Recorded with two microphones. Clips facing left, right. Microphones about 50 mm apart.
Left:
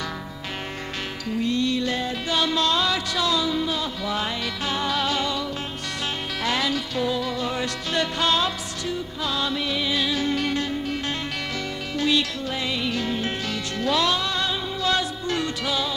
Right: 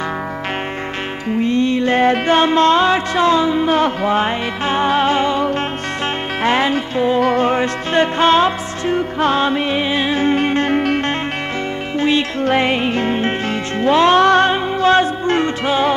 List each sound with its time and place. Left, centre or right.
1.3 s music: right
2.0 s music: right
3.7 s music: right
10.7 s music: right
12.0 s music: right
12.4 s music: right
14.1 s music: right